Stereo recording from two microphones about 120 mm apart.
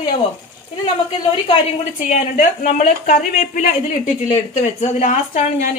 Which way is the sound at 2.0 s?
90° left.